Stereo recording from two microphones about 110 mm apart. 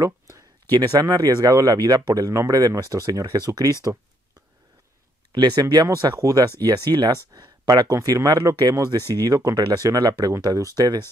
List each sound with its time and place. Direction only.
0.0 s speech: 30° right (ahead or behind)
5.3 s speech: 40° right (ahead or behind)